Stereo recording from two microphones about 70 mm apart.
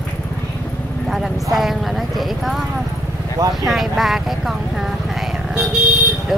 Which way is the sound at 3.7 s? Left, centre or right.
Centre.